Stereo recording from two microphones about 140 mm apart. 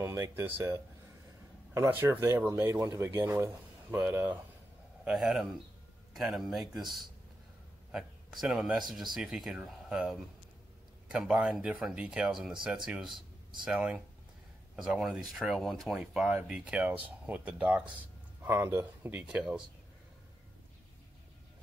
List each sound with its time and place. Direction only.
0.0 s speech: 15° right (ahead or behind)